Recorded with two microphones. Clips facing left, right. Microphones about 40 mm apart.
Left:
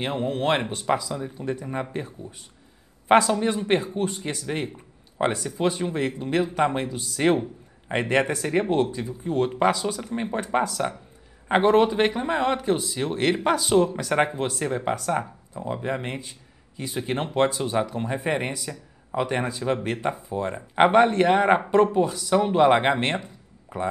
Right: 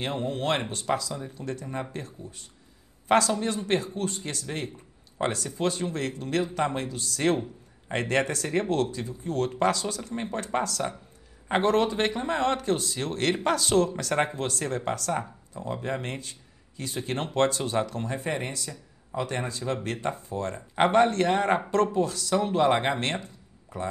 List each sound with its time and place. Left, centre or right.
0.0 s a man's voice: left